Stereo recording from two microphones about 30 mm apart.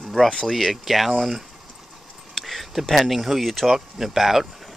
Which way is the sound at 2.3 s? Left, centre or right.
Centre.